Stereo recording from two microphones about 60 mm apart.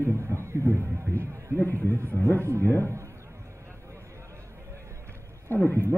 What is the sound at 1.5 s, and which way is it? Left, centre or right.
Speech, left.